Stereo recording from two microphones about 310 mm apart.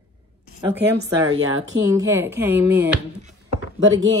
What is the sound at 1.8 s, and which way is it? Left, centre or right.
Speech, centre.